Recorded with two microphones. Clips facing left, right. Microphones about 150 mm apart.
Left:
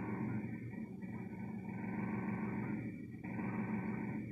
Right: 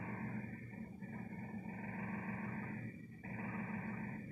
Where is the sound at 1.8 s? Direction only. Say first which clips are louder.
Left 7 dB; 5° right (ahead or behind).